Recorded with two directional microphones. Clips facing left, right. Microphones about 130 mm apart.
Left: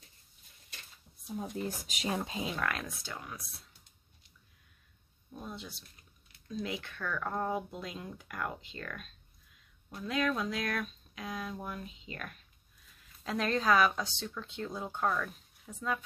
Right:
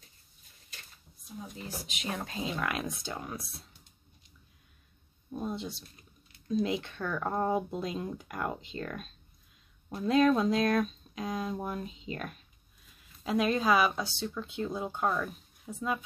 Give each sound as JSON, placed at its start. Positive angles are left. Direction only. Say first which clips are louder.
{"t": 2.0, "sound": "speech", "louder": "left 2 dB", "side_deg": 20}
{"t": 2.5, "sound": "speech", "louder": "right 2 dB", "side_deg": -15}
{"t": 5.3, "sound": "speech", "louder": "right 8 dB", "side_deg": -25}
{"t": 13.2, "sound": "speech", "louder": "right 4 dB", "side_deg": -10}